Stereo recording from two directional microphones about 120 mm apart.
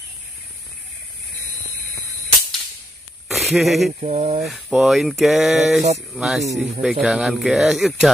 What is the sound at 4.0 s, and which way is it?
Speech, 65° right (ahead or behind).